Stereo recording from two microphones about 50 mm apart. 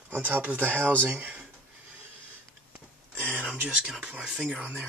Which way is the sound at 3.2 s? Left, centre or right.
Right.